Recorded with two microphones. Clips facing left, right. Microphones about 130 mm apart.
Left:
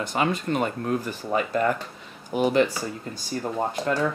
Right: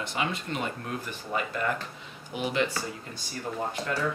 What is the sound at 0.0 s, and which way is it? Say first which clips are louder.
Speech: left 6 dB; 45° left (ahead or behind).